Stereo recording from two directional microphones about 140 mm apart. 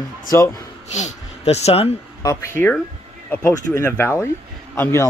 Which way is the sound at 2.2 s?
25° left (ahead or behind).